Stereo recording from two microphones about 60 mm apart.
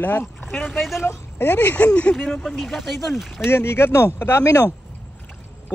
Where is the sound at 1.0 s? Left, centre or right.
Left; by 2.2 s centre.